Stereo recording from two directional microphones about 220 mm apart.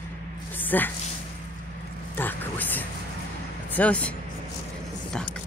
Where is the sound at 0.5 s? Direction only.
10° left (ahead or behind).